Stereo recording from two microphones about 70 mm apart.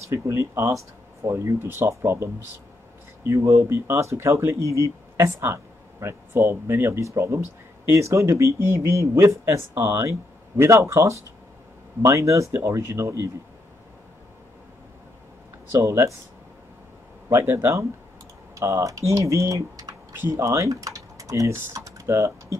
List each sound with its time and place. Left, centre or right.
0.1 s speech: right
15.7 s speech: right
17.3 s speech: right
20.2 s speech: right